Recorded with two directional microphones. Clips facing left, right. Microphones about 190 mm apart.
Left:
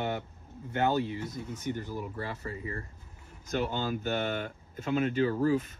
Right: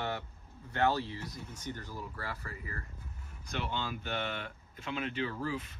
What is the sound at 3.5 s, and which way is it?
Speech, 40° left (ahead or behind).